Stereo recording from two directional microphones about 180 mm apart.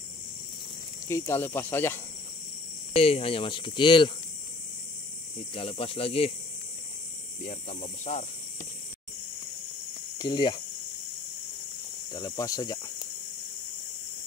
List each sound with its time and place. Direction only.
1.0 s speech: 15° left (ahead or behind)
2.9 s speech: 30° left (ahead or behind)
5.5 s speech: 30° left (ahead or behind)
7.4 s speech: 40° left (ahead or behind)
10.1 s speech: 25° left (ahead or behind)
12.1 s speech: 20° left (ahead or behind)